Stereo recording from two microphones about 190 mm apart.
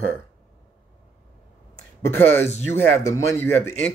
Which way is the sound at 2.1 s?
10° left (ahead or behind).